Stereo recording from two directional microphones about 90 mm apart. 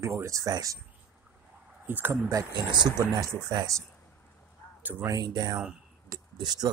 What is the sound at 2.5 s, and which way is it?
Speech, 55° right (ahead or behind).